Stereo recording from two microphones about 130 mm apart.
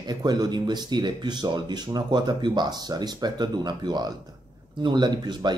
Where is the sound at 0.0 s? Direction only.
30° right (ahead or behind).